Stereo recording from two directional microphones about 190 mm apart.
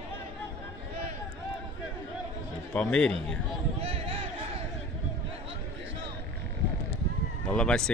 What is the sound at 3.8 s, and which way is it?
Crowd, 30° right (ahead or behind).